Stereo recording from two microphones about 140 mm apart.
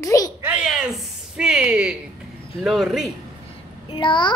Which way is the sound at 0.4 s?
10° right (ahead or behind).